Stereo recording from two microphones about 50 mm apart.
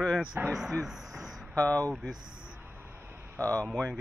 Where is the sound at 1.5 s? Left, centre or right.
Left.